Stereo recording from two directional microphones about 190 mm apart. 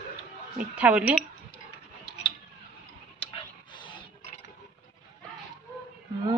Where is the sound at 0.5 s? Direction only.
5° right (ahead or behind).